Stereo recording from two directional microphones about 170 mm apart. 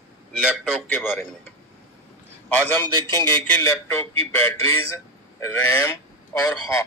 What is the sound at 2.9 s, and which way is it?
Speech, 25° right (ahead or behind).